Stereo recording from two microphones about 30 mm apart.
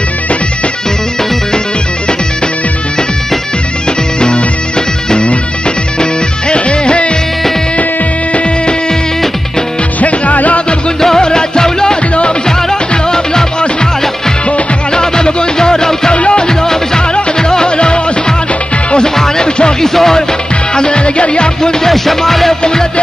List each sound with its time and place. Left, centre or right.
4.2 s bagpipes: left
6.5 s music: left
9.9 s music: left
11.0 s music: centre
15.0 s music: left
16.2 s music: left
16.4 s music: left
19.1 s music: centre
20.7 s music: left
21.8 s music: centre